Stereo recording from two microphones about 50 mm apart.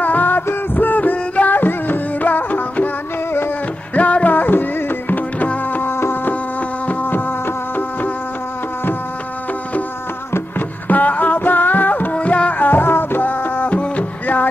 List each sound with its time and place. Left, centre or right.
0.0 s music: left
3.9 s music: left
5.7 s insect: left
5.9 s insect: left
6.9 s music: left
10.9 s music: left